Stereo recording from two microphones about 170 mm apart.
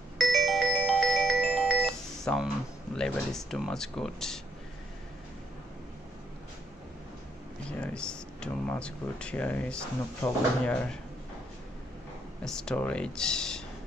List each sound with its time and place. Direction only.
0.2 s music: centre (ahead or behind)
3.0 s speech: centre (ahead or behind)
7.8 s speech: 5° left (ahead or behind)
12.4 s speech: 5° left (ahead or behind)